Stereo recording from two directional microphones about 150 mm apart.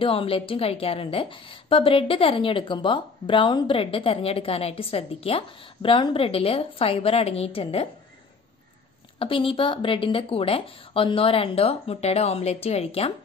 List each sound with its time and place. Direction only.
0.0 s a woman's voice: 35° left (ahead or behind)
9.2 s a woman's voice: 35° left (ahead or behind)